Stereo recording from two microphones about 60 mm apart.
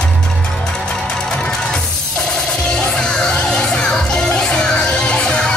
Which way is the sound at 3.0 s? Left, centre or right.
Centre.